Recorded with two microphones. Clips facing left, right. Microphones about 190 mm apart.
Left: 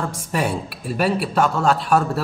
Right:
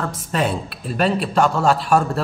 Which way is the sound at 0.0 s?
10° left (ahead or behind).